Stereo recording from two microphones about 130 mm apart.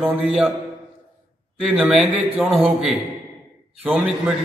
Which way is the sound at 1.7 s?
Centre (ahead or behind).